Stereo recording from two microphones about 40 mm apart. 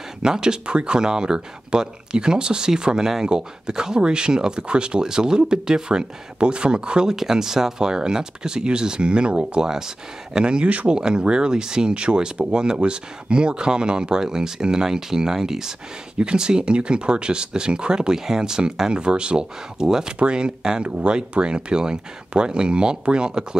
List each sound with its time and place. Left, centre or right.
0.2 s speech: centre
9.6 s speech: centre; by 11.0 s right
11.0 s speech: right
16.2 s speech: right